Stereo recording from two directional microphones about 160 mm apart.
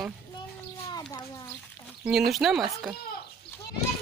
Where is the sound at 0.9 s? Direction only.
25° left (ahead or behind).